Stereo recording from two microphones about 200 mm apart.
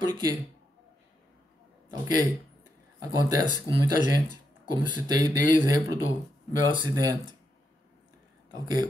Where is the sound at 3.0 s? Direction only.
15° right (ahead or behind).